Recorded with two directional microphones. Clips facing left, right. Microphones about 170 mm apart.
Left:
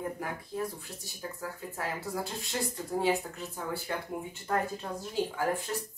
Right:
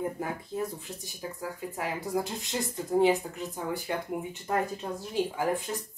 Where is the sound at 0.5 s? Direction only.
25° right (ahead or behind).